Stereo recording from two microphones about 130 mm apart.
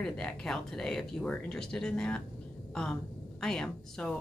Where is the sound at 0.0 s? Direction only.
5° left (ahead or behind).